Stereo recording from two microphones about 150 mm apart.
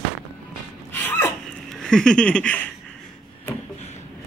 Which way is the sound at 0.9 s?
15° left (ahead or behind).